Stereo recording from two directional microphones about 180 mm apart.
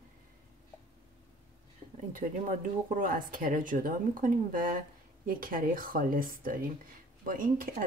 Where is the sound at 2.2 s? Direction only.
45° right (ahead or behind).